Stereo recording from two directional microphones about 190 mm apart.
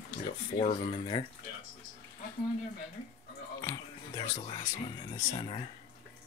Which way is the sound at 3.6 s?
20° left (ahead or behind).